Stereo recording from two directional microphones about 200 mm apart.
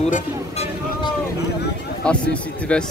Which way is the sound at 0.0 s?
30° left (ahead or behind).